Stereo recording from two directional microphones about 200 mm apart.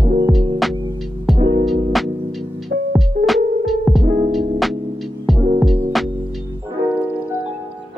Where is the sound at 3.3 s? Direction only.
Centre (ahead or behind).